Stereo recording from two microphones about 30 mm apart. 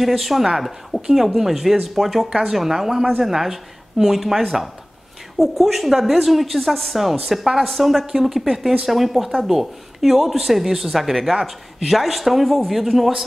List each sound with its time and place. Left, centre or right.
0.0 s speech: centre
2.2 s speech: right
2.5 s speech: centre
5.4 s speech: centre